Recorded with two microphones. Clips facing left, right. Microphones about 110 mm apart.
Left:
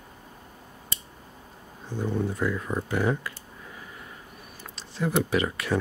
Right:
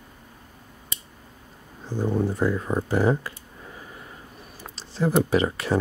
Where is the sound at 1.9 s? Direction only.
35° right (ahead or behind).